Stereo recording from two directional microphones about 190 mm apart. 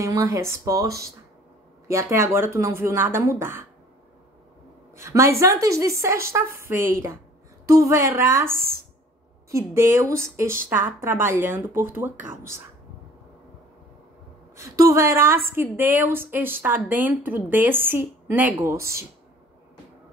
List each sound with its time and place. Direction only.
0.0 s speech: 15° right (ahead or behind)
4.9 s a woman's voice: 15° right (ahead or behind)
14.6 s speech: 15° right (ahead or behind)